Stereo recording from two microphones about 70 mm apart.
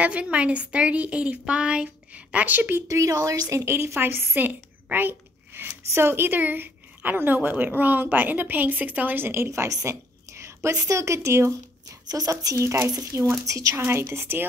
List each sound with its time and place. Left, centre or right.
0.0 s a woman's voice: centre
2.9 s a woman's voice: right
9.5 s a woman's voice: right
12.1 s a woman's voice: right
13.5 s speech: right
13.7 s a woman's voice: right